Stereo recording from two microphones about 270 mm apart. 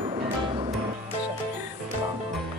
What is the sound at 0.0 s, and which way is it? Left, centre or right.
Music, centre.